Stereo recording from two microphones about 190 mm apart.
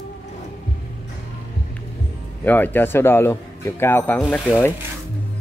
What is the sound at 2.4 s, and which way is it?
Speech, 10° left (ahead or behind).